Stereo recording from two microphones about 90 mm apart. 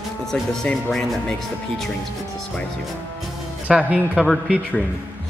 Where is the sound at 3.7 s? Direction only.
10° right (ahead or behind).